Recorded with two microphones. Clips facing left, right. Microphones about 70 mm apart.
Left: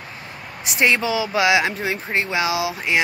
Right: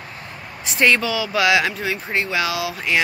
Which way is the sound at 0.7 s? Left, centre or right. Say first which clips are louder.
Right 1 dB; centre.